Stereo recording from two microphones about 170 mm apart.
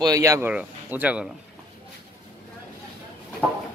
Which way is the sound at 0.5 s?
10° right (ahead or behind).